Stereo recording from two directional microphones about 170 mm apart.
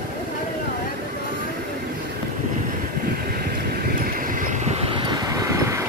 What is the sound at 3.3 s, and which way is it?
Vehicle, 60° right (ahead or behind).